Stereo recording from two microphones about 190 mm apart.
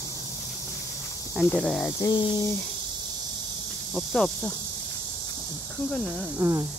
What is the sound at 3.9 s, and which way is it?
Speech, centre (ahead or behind).